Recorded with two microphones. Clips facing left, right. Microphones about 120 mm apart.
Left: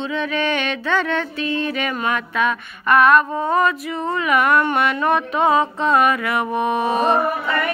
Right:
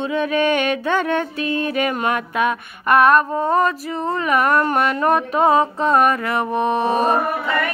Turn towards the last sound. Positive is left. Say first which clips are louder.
# right 1 dB
turn(degrees=-35)  # may be behind; listen again after turning